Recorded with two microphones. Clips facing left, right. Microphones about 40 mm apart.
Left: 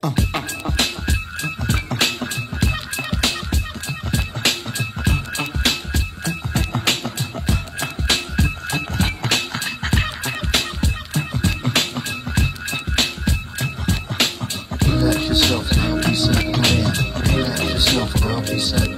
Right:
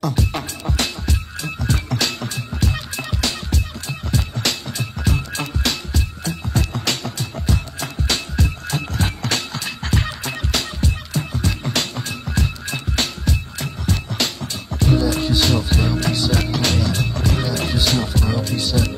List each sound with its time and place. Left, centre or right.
0.0 s music: left